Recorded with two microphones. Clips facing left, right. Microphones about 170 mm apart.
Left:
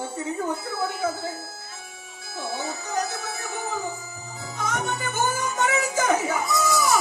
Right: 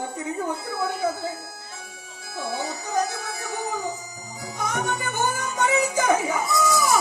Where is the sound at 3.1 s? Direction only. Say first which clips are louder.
Right 1 dB; 15° right (ahead or behind).